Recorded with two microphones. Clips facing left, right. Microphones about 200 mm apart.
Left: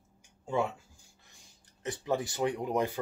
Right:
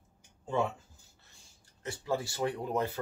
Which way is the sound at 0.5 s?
10° left (ahead or behind).